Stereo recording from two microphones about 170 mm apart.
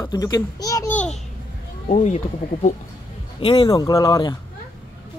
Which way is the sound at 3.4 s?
30° left (ahead or behind).